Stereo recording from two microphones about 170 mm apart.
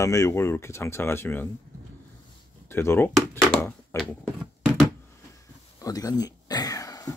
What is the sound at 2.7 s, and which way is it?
Speech, 15° left (ahead or behind).